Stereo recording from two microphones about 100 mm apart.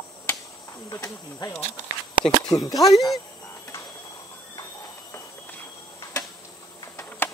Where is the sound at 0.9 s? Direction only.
35° left (ahead or behind).